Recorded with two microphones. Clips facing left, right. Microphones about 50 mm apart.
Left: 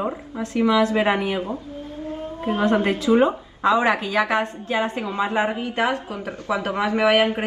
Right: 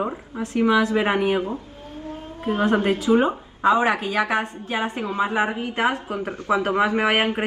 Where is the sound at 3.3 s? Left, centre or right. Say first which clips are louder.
Even; right.